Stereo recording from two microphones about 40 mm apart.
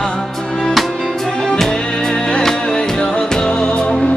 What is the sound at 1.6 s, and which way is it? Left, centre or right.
Music, centre.